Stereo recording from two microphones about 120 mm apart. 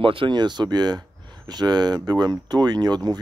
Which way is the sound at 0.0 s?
45° right (ahead or behind).